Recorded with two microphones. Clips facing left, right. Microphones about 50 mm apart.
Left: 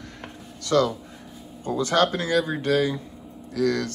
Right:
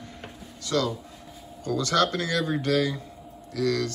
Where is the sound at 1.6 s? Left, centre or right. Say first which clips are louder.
Left 2 dB; left.